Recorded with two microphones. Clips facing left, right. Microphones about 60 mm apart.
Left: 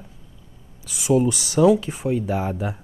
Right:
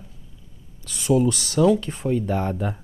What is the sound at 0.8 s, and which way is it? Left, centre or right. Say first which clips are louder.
Speech: left 1 dB; centre.